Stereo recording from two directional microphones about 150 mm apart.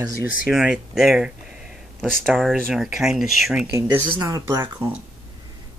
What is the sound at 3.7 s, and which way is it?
Speech, 20° right (ahead or behind).